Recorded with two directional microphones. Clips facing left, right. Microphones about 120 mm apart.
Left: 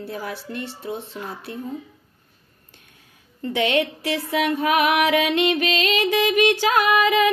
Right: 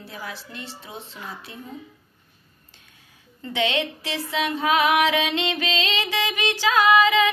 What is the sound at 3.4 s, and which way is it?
Music, 50° left (ahead or behind).